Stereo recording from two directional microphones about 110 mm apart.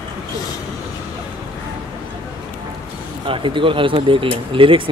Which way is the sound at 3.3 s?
50° right (ahead or behind).